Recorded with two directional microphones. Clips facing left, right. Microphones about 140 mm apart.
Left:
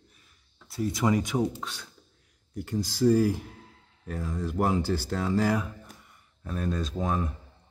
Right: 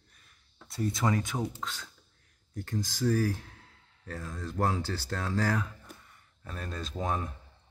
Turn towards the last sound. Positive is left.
turn(degrees=0)  # may be behind; listen again after turning